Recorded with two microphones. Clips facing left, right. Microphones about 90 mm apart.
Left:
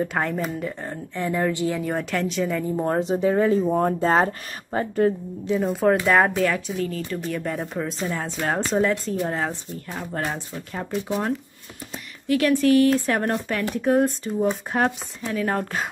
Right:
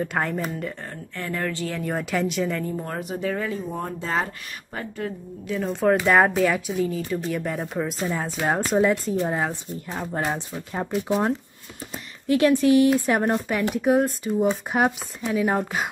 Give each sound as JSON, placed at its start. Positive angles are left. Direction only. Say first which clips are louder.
{"t": 0.0, "sound": "speech", "louder": "left 1 dB", "side_deg": 0}
{"t": 0.8, "sound": "speech", "louder": "left 5 dB", "side_deg": 15}
{"t": 1.8, "sound": "speech", "louder": "even", "side_deg": 0}
{"t": 2.7, "sound": "speech", "louder": "left 7 dB", "side_deg": 25}
{"t": 3.7, "sound": "speech", "louder": "left 7 dB", "side_deg": 45}
{"t": 5.6, "sound": "speech", "louder": "even", "side_deg": 5}
{"t": 10.9, "sound": "speech", "louder": "right 2 dB", "side_deg": -5}
{"t": 12.3, "sound": "speech", "louder": "right 1 dB", "side_deg": -20}